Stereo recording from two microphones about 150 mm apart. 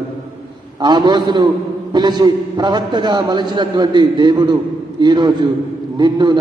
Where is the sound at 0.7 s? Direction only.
30° right (ahead or behind).